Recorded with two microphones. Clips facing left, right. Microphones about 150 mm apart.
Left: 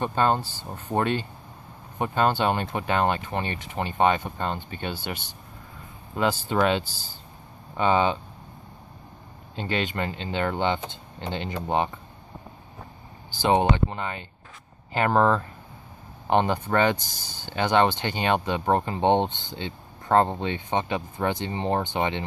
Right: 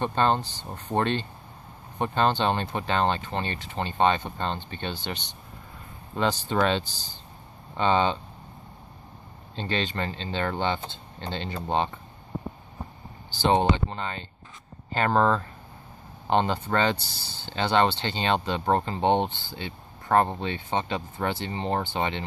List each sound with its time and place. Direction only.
0.0 s speech: 10° left (ahead or behind)
9.6 s speech: 10° left (ahead or behind)
13.4 s speech: 15° left (ahead or behind)